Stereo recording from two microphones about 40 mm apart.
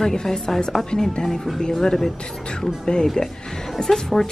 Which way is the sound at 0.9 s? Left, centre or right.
Left.